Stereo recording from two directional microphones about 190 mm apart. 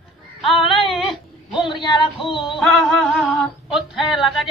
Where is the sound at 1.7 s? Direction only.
25° left (ahead or behind).